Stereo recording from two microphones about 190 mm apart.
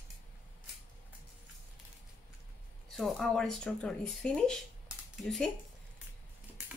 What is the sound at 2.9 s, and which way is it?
Speech, centre (ahead or behind).